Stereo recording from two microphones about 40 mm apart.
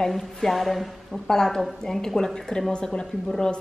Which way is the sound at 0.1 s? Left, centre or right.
Centre.